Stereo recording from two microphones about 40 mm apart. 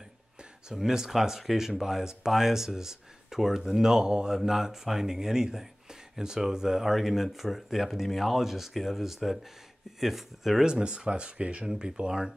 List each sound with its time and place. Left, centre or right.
0.7 s speech: centre
10.6 s speech: right